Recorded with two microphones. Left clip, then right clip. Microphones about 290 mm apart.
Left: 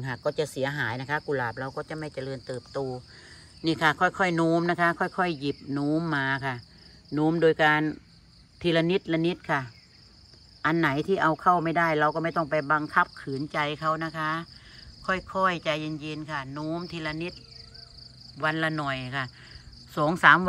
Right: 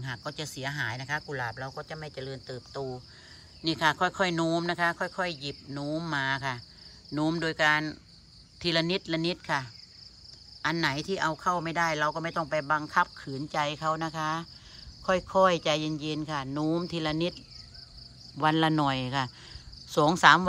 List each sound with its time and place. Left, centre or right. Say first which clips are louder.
0.1 s speech: left 9 dB; right
0.9 s speech: left 5 dB; centre
18.4 s speech: right 2 dB; centre